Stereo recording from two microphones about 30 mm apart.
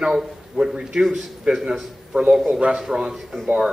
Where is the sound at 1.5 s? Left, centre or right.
Right.